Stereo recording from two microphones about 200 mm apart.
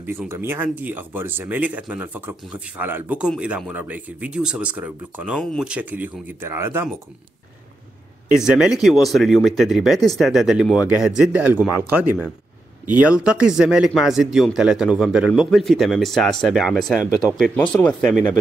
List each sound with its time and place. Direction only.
0.0 s speech: 10° right (ahead or behind)
8.4 s speech: 5° right (ahead or behind)